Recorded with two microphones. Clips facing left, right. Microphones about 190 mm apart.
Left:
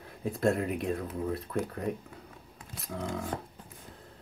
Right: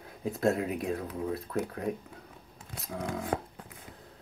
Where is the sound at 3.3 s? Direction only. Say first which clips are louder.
Right 5 dB; 60° right (ahead or behind).